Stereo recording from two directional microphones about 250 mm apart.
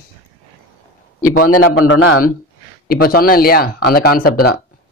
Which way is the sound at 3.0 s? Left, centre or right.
Left.